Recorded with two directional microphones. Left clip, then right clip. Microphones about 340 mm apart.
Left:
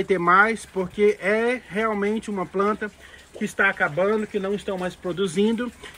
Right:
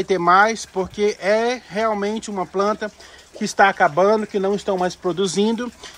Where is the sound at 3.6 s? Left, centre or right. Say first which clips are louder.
Right 6 dB; right.